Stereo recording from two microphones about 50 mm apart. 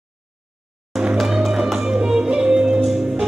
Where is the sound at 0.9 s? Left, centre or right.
Centre.